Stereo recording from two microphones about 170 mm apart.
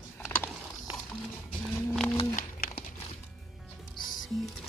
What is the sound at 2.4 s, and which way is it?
Crumpling, 60° left (ahead or behind).